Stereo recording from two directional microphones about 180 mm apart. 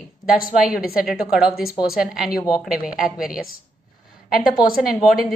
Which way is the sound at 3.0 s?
5° right (ahead or behind).